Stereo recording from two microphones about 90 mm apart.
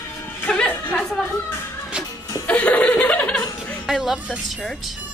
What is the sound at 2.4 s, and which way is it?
Laughter, 15° left (ahead or behind).